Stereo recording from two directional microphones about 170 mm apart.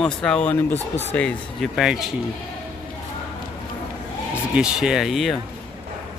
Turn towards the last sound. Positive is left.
turn(degrees=0)  # may be behind; listen again after turning